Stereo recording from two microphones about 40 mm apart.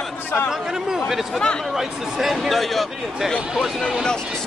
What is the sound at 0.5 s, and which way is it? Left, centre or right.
Speech, centre.